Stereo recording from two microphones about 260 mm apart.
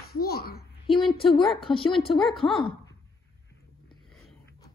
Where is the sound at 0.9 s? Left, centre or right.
Centre.